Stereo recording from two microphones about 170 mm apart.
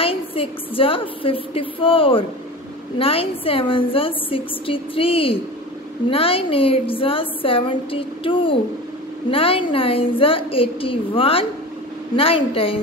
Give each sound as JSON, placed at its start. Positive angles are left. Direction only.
{"t": 0.0, "sound": "a woman's voice", "side_deg": 35}